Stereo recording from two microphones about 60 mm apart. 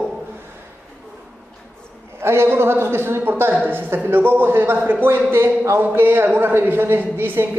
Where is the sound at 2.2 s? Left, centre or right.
Right.